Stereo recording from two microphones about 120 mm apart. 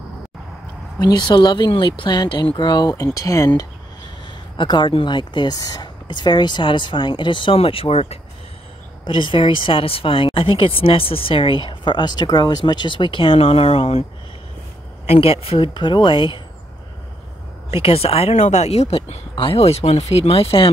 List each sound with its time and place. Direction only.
0.9 s speech: 35° left (ahead or behind)
4.6 s speech: 40° left (ahead or behind); by 8.2 s 55° left (ahead or behind)
9.0 s speech: 45° left (ahead or behind)
15.0 s speech: 55° left (ahead or behind)
17.8 s speech: 55° left (ahead or behind)
19.3 s speech: 50° left (ahead or behind)